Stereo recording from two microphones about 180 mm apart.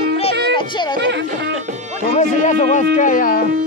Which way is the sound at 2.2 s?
45° left (ahead or behind).